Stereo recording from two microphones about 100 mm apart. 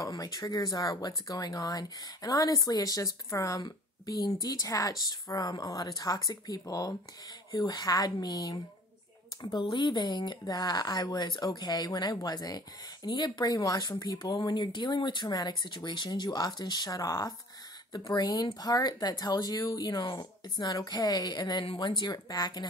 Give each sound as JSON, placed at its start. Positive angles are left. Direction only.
{"t": 0.0, "sound": "speech", "side_deg": 35}